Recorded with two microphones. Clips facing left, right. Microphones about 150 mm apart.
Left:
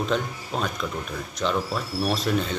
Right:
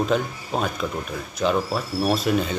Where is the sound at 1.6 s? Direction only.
10° right (ahead or behind).